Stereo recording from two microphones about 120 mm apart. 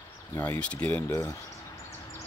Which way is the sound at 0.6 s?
10° left (ahead or behind).